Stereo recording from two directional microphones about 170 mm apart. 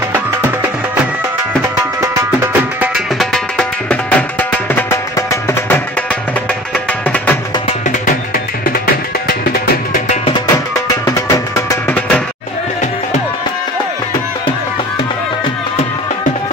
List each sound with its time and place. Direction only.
2.0 s music: 15° right (ahead or behind)
3.2 s music: 5° left (ahead or behind)
10.3 s music: 20° left (ahead or behind)